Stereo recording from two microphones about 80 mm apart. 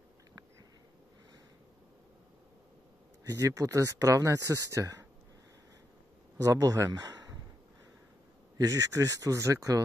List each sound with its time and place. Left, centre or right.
3.3 s speech: right
6.3 s speech: right
8.5 s speech: right